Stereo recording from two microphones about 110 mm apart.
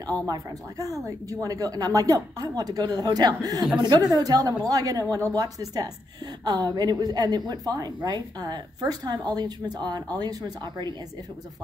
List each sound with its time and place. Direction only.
0.0 s speech: 35° right (ahead or behind)